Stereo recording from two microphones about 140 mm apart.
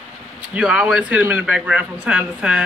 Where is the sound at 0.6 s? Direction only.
5° right (ahead or behind).